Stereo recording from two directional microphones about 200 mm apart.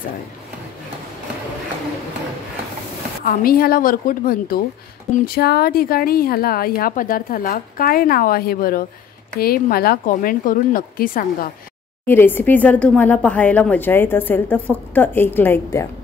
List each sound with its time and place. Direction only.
3.3 s speech: 50° left (ahead or behind)
12.1 s speech: 10° left (ahead or behind)